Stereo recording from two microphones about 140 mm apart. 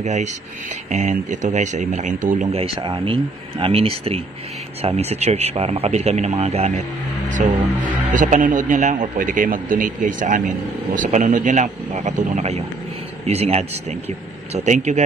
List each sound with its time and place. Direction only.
0.0 s speech: 55° right (ahead or behind)
2.5 s speech: 40° right (ahead or behind)
7.2 s speech: 65° right (ahead or behind)